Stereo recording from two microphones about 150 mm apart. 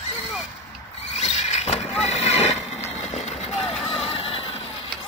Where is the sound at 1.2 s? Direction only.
50° left (ahead or behind).